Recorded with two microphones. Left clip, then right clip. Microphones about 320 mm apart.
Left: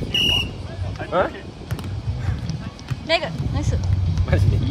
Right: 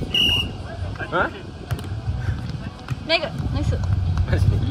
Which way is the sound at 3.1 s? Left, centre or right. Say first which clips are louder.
Even; centre.